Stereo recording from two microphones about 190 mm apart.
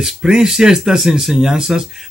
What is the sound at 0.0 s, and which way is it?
Speech, 5° right (ahead or behind).